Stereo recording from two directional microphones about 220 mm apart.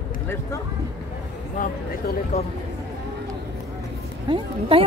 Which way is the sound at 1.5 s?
35° left (ahead or behind).